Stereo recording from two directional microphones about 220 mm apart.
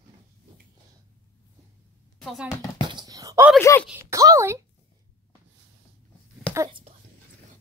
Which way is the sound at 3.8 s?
10° right (ahead or behind).